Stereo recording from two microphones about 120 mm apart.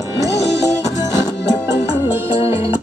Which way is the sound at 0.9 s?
30° left (ahead or behind).